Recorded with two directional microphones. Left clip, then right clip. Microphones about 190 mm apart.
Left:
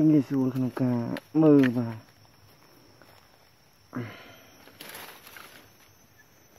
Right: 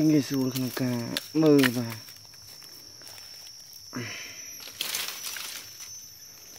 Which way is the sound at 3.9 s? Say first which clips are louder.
Right 3 dB; 10° left (ahead or behind).